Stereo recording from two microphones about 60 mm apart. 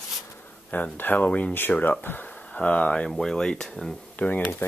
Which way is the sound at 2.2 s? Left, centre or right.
Left.